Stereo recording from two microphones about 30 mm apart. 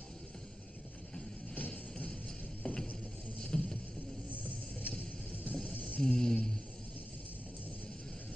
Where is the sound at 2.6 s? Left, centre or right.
Left.